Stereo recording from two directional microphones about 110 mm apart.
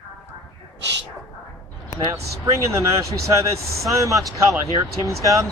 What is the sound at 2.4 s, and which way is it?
Speech, 25° right (ahead or behind).